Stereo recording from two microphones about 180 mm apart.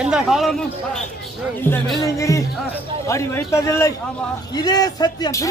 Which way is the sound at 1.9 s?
15° left (ahead or behind).